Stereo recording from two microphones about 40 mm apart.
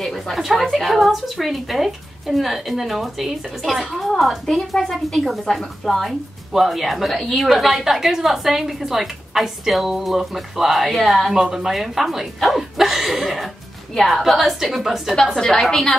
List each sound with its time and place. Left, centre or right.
0.0 s a sound: centre
0.6 s a woman's voice: centre
4.5 s a woman's voice: centre
15.3 s a woman's voice: centre